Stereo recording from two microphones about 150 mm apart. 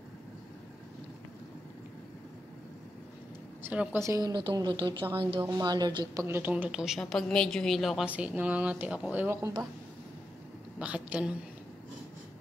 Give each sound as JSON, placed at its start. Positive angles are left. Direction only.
{"t": 3.6, "sound": "speech", "side_deg": -10}
{"t": 6.2, "sound": "a woman's voice", "side_deg": -15}
{"t": 9.4, "sound": "speech", "side_deg": -25}
{"t": 10.8, "sound": "a woman's voice", "side_deg": -10}